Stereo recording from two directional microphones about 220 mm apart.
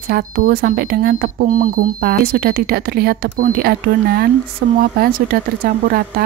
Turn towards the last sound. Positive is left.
turn(degrees=-40)  # may be behind; listen again after turning